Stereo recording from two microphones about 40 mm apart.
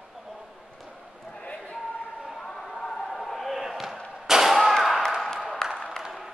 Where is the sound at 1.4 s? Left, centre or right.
Left.